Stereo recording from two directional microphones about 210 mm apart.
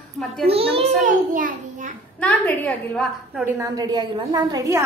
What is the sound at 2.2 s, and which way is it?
A woman's voice, 5° left (ahead or behind).